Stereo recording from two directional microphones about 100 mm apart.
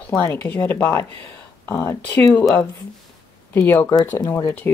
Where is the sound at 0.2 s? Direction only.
25° left (ahead or behind).